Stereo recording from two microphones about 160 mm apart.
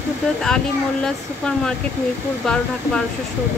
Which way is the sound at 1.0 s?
5° left (ahead or behind).